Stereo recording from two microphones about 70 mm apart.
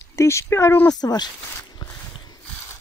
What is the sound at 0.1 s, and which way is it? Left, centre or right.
Speech, left.